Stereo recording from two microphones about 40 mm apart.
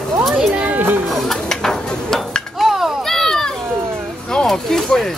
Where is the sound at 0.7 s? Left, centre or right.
Right.